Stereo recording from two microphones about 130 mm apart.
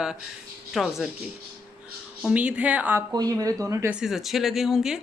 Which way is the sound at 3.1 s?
30° right (ahead or behind).